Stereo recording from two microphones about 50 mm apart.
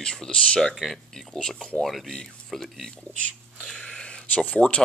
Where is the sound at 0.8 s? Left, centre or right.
Centre.